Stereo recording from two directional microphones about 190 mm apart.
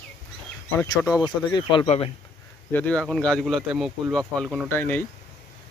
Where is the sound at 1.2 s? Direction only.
25° left (ahead or behind).